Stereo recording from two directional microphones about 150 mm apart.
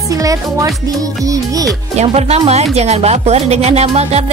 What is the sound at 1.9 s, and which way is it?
Speech, 45° right (ahead or behind).